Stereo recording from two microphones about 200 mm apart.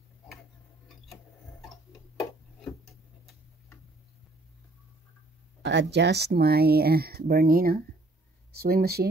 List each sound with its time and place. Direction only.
5.6 s speech: 60° right (ahead or behind)